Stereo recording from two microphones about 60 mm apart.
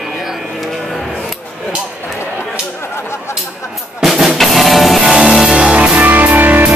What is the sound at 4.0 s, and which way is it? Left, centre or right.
Music, centre.